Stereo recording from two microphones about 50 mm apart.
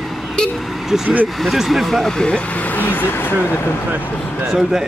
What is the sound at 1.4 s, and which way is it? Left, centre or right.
Speech, centre.